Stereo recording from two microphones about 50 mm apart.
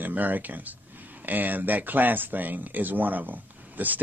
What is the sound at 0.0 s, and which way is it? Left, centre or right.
Speech, right.